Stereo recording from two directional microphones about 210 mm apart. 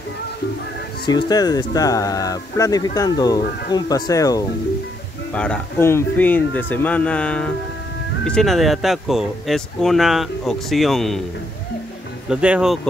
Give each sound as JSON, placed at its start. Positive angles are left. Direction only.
{"t": 1.0, "sound": "speech", "side_deg": 20}
{"t": 5.3, "sound": "speech", "side_deg": 5}
{"t": 12.3, "sound": "speech", "side_deg": -5}